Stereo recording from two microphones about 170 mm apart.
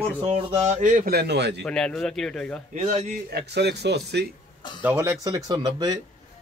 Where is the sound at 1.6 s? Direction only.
5° left (ahead or behind).